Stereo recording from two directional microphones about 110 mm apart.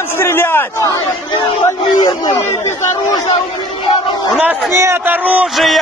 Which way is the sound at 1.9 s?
35° left (ahead or behind).